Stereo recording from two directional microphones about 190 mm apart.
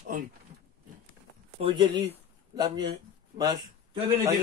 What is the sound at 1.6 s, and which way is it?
Speech, 25° right (ahead or behind).